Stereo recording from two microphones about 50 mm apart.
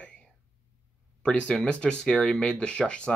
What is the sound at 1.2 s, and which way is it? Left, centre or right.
Speech, left.